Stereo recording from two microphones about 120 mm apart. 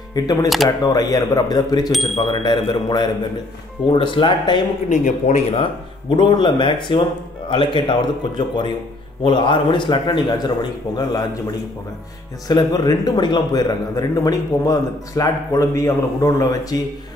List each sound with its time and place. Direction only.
0.1 s a man's voice: 35° left (ahead or behind)
2.1 s a man's voice: 45° left (ahead or behind)
4.8 s a man's voice: 90° left
5.5 s a man's voice: 45° left (ahead or behind)
12.4 s a man's voice: 35° left (ahead or behind)